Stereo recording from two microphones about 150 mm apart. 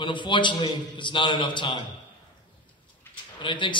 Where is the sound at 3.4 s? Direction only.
30° left (ahead or behind).